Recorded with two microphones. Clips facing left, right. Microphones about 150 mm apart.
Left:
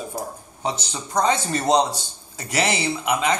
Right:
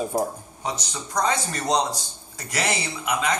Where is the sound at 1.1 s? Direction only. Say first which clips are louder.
Left 4 dB; 25° left (ahead or behind).